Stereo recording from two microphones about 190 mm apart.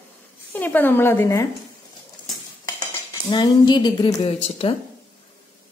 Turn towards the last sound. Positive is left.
turn(degrees=30)  # may be behind; listen again after turning